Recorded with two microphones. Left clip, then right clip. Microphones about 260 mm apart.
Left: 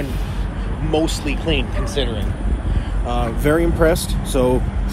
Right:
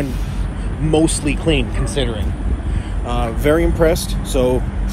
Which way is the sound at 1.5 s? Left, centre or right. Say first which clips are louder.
Right 2 dB; right.